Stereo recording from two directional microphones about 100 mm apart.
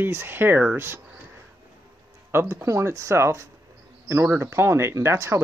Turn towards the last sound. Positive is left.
turn(degrees=-25)  # may be behind; listen again after turning